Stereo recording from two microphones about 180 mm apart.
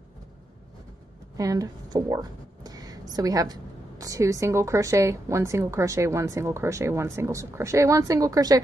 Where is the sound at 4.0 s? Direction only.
20° right (ahead or behind).